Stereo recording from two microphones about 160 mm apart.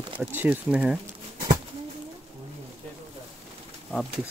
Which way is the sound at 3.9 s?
Centre (ahead or behind).